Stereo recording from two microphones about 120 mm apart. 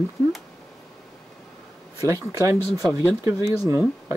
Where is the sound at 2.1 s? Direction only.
25° right (ahead or behind).